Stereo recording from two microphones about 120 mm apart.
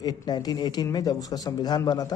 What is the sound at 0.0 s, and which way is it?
A man's voice, 35° left (ahead or behind).